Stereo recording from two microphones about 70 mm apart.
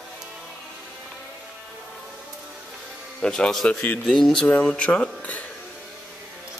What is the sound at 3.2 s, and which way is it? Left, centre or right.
Speech, centre.